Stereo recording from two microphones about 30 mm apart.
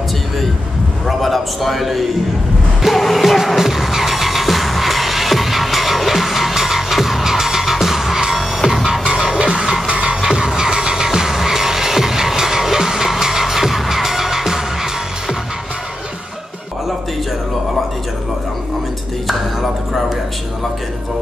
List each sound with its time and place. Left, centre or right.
1.0 s a sound: centre
2.8 s music: centre
9.0 s music: right
19.2 s music: centre